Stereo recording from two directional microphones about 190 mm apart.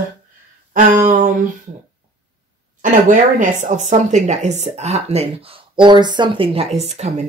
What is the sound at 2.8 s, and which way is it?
Speech, 45° right (ahead or behind).